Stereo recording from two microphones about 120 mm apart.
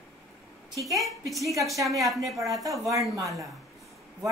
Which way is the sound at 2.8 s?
25° right (ahead or behind).